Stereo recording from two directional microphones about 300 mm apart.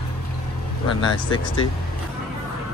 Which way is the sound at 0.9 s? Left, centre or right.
Centre.